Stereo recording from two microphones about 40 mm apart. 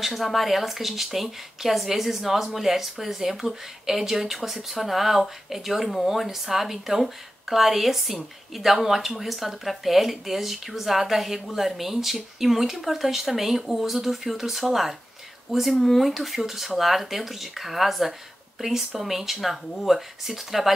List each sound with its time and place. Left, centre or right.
0.0 s speech: centre